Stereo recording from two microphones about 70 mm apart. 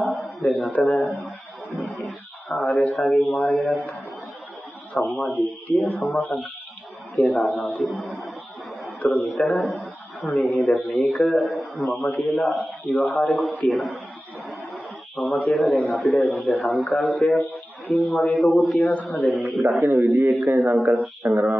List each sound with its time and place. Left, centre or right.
0.0 s a sound: centre
0.8 s a man's voice: centre
5.2 s a man's voice: centre
19.6 s a man's voice: right
20.2 s a man's voice: centre
21.2 s mantra: centre